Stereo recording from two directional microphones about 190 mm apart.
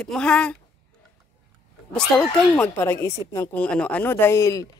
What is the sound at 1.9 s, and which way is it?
A child's voice, 5° left (ahead or behind).